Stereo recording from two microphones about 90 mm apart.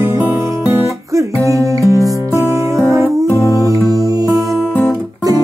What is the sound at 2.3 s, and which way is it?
Music, 35° right (ahead or behind).